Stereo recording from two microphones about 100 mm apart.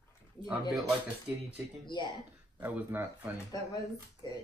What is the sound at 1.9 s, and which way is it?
Speech, 50° left (ahead or behind).